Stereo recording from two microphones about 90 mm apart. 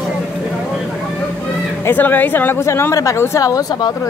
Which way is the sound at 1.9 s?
20° left (ahead or behind).